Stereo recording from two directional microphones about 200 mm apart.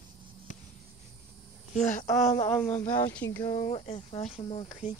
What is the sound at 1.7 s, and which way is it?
Speech, 40° left (ahead or behind).